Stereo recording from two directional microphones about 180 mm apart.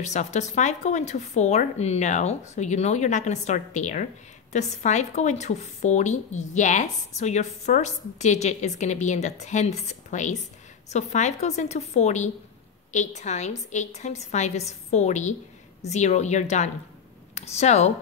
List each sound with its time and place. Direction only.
0.0 s a woman's voice: 40° left (ahead or behind)